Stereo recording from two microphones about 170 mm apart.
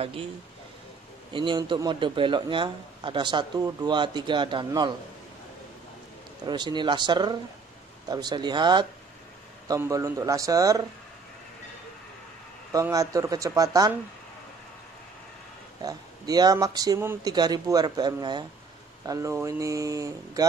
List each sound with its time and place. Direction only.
1.3 s a man's voice: 30° right (ahead or behind)
6.4 s a man's voice: 25° right (ahead or behind)
12.7 s a man's voice: 20° right (ahead or behind)
15.8 s a man's voice: 20° right (ahead or behind)